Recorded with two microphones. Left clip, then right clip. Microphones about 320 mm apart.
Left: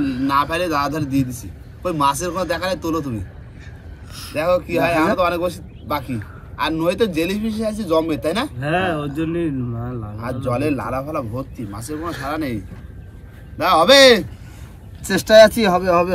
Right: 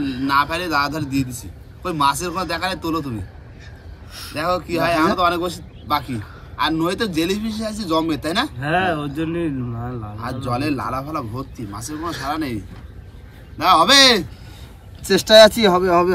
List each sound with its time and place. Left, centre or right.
0.4 s speech: centre
1.8 s speech: centre
13.7 s speech: centre